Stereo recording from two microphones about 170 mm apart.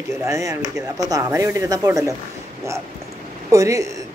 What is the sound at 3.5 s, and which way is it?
Speech, 20° right (ahead or behind).